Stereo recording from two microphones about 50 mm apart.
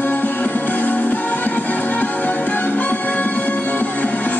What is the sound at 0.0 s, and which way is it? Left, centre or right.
Music, left.